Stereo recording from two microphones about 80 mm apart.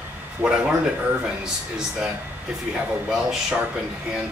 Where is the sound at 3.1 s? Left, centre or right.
Centre.